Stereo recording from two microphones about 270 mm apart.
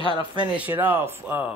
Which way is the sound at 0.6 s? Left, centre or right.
Centre.